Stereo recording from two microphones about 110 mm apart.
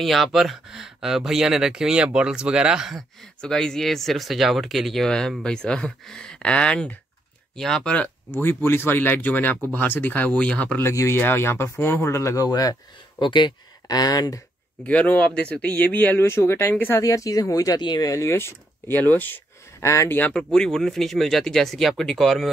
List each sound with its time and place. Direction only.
0.0 s speech: centre (ahead or behind)
10.9 s speech: 25° left (ahead or behind)
13.2 s speech: 45° left (ahead or behind)
14.8 s speech: 10° left (ahead or behind)
17.0 s speech: 30° left (ahead or behind)
19.9 s speech: 30° left (ahead or behind)
20.2 s speech: 10° left (ahead or behind)